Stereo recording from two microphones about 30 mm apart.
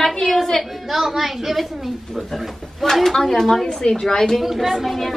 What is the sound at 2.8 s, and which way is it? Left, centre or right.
Speech, centre.